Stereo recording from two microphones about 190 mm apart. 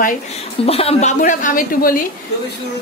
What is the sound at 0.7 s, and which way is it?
A woman's voice, 30° left (ahead or behind).